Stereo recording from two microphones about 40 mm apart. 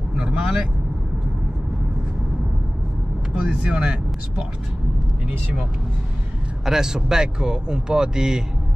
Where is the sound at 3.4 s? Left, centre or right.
Right.